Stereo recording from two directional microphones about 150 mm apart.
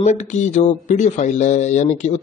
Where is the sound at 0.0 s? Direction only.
50° left (ahead or behind).